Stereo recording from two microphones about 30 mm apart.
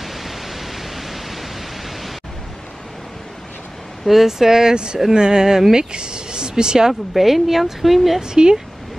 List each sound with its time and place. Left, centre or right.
0.0 s pink noise: centre
4.0 s speech: centre
4.3 s speech: centre
4.7 s speech: right
6.9 s speech: centre
8.2 s speech: right